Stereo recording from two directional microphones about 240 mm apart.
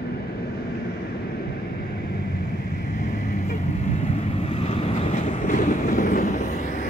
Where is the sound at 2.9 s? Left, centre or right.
Left.